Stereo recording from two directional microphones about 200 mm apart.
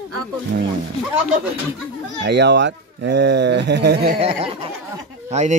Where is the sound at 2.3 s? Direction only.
60° right (ahead or behind).